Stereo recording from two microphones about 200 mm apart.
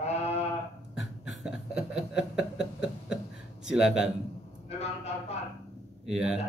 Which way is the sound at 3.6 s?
Centre (ahead or behind).